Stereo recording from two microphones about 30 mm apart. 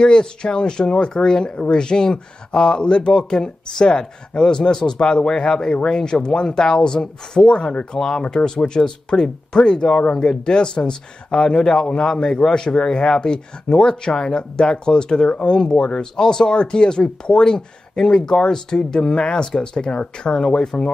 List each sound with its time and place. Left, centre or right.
0.0 s speech: left